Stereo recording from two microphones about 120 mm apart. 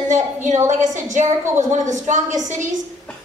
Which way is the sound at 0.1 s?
90° right.